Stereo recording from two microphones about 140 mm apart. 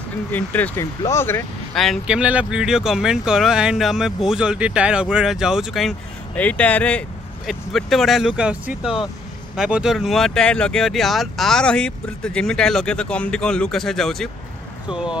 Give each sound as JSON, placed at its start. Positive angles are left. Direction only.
{"t": 0.3, "sound": "speech", "side_deg": 10}
{"t": 1.7, "sound": "speech", "side_deg": 0}
{"t": 6.3, "sound": "speech", "side_deg": 10}